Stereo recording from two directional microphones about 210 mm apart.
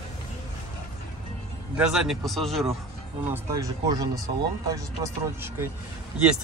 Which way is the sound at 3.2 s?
10° right (ahead or behind).